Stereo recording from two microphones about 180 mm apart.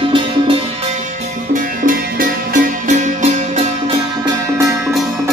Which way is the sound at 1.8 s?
50° right (ahead or behind).